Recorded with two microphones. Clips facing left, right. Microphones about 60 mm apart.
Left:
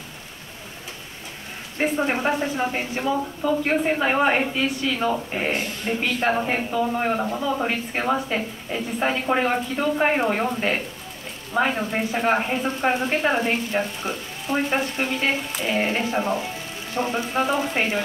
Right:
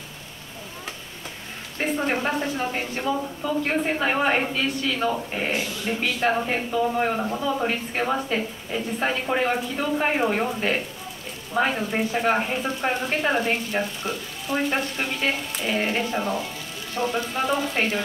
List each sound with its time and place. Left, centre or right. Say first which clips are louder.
1.8 s a woman's voice: left 2 dB; centre
5.5 s speech: even; left
6.2 s a woman's voice: even; centre
14.0 s rain on surface: left 1 dB; left
14.7 s a woman's voice: left 2 dB; centre
16.9 s rain on surface: left 2 dB; left
17.5 s a woman's voice: left 1 dB; centre